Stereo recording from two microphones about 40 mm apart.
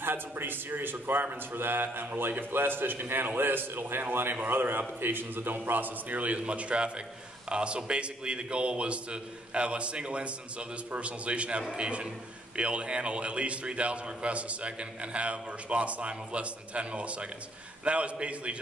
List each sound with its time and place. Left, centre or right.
0.0 s a man's voice: right